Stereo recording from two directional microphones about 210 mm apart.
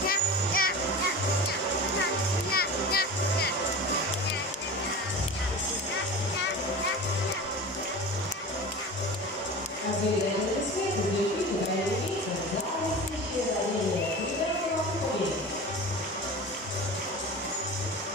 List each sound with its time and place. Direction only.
0.1 s music: 45° left (ahead or behind)
2.5 s music: 45° left (ahead or behind)